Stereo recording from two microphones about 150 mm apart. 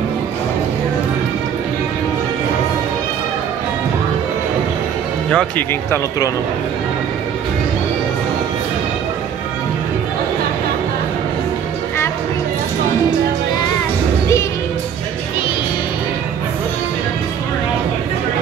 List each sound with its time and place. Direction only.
5.3 s speech: 5° left (ahead or behind)
5.9 s speech: 25° left (ahead or behind)